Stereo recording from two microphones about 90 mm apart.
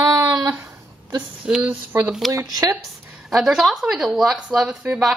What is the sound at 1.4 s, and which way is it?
Speech, 10° right (ahead or behind).